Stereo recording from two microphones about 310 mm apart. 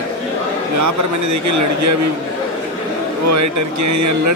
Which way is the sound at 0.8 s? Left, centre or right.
Right.